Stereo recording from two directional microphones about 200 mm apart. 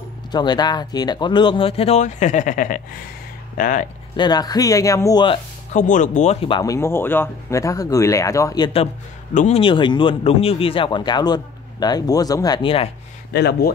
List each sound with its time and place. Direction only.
0.3 s speech: 20° left (ahead or behind); by 3.8 s 40° left (ahead or behind)
4.2 s speech: 20° left (ahead or behind)
5.8 s speech: 40° left (ahead or behind)
6.6 s speech: 15° left (ahead or behind)
9.3 s speech: 40° left (ahead or behind)
9.6 s speech: 25° left (ahead or behind)
13.3 s speech: 55° left (ahead or behind)